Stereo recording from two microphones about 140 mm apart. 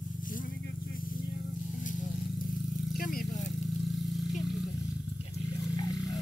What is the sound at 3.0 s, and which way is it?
Vehicle, 90° left.